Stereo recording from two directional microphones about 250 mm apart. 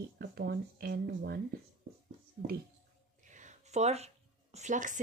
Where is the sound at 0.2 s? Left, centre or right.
Right.